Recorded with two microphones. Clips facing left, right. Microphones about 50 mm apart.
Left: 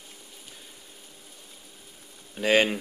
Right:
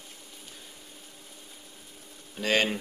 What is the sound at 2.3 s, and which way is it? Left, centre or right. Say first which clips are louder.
Speech: left 4 dB; centre.